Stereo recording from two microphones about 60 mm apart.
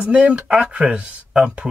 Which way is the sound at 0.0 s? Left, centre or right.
Centre.